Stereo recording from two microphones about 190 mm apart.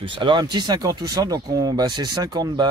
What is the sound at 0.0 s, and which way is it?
Speech, 25° right (ahead or behind).